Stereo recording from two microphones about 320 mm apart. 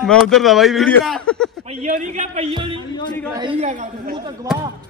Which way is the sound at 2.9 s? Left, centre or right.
Centre.